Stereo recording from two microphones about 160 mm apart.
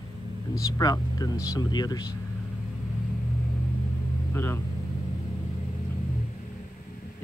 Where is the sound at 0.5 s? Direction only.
25° left (ahead or behind).